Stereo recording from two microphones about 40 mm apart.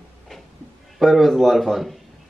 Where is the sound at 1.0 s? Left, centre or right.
Centre.